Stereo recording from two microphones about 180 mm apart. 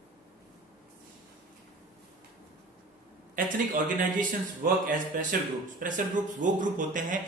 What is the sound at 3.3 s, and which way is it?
Speech, 45° right (ahead or behind).